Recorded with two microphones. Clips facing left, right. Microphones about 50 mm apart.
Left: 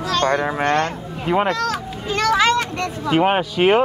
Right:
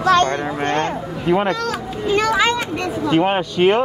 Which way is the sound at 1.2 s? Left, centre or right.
Centre.